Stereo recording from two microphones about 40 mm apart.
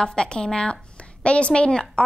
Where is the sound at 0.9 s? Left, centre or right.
Left.